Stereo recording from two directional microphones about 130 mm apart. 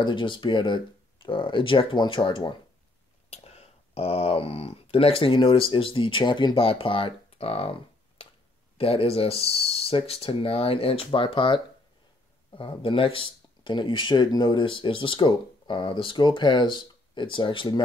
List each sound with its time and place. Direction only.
0.0 s speech: 40° left (ahead or behind)
3.3 s speech: 50° left (ahead or behind)
8.7 s speech: 45° left (ahead or behind)